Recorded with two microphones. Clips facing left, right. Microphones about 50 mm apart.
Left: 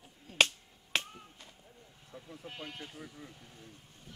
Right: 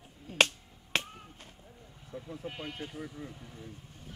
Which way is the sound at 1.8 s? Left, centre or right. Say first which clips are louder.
Right 7 dB; centre.